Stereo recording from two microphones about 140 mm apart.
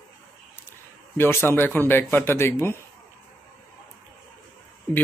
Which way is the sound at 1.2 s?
15° left (ahead or behind).